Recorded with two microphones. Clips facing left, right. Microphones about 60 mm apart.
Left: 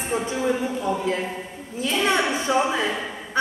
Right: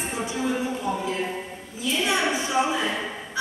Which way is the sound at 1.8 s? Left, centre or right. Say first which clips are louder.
Left 3 dB; left.